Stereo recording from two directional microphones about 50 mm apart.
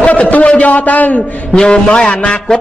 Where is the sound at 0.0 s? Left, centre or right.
Left.